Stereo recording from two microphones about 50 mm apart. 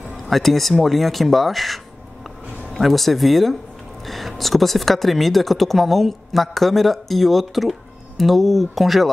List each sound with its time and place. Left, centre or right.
0.0 s speech: centre